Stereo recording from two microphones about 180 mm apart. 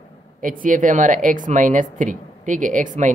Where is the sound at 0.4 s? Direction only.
50° right (ahead or behind).